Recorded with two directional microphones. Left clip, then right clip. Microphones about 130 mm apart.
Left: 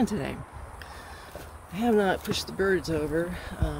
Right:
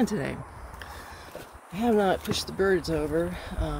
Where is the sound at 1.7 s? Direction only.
5° left (ahead or behind).